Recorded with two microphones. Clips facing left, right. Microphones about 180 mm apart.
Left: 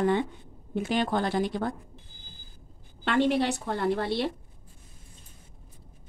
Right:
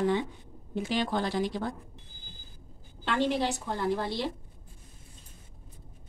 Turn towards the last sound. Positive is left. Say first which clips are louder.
# left 3 dB
turn(degrees=65)  # may be behind; listen again after turning